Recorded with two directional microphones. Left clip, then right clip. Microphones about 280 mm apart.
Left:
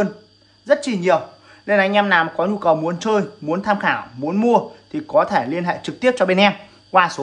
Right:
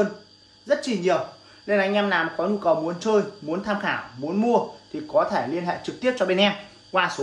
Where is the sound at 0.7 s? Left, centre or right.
Centre.